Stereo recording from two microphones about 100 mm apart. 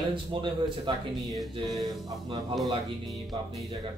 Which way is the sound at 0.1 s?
55° right (ahead or behind).